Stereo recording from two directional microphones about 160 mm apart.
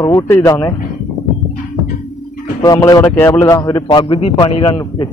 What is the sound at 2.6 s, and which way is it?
A man's voice, 25° left (ahead or behind).